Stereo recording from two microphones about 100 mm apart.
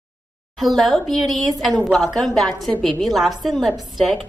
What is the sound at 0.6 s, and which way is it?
A woman's voice, centre (ahead or behind).